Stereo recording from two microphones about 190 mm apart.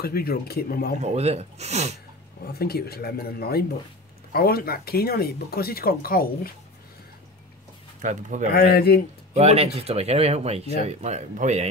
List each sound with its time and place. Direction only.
0.0 s speech: 55° left (ahead or behind)
1.0 s speech: 35° right (ahead or behind)
2.4 s speech: 55° left (ahead or behind)
8.0 s speech: 40° right (ahead or behind)
8.5 s speech: 55° left (ahead or behind)
9.3 s speech: 35° right (ahead or behind)